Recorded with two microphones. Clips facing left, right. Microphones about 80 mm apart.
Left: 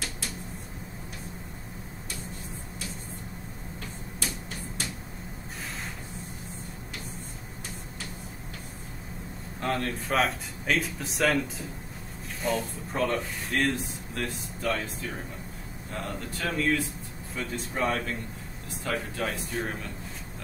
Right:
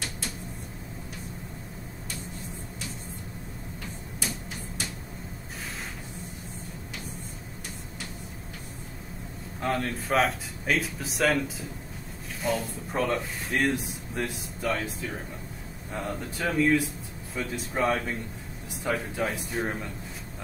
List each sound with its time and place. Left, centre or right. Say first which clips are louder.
9.6 s speech: right 1 dB; centre
18.9 s a man's voice: right 2 dB; centre